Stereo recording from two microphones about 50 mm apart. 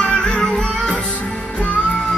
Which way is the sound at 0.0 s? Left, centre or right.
Centre.